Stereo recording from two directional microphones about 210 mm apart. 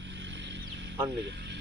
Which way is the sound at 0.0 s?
60° right (ahead or behind).